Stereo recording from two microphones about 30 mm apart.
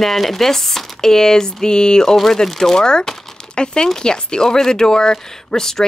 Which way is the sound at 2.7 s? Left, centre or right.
Left.